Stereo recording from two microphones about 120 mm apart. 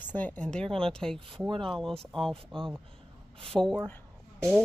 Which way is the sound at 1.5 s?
45° right (ahead or behind).